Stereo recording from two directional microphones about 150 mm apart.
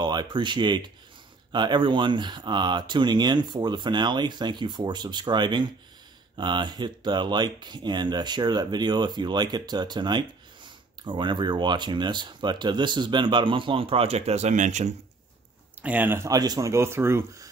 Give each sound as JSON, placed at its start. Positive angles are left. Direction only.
{"t": 0.0, "sound": "speech", "side_deg": -30}
{"t": 15.8, "sound": "speech", "side_deg": -10}